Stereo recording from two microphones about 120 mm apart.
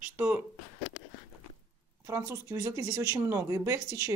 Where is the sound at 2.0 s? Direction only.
25° right (ahead or behind).